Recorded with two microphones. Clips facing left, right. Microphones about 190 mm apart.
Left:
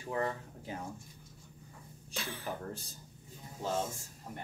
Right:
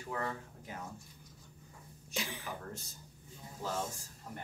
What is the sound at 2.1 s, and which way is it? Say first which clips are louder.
Speech: right 1 dB; 15° right (ahead or behind).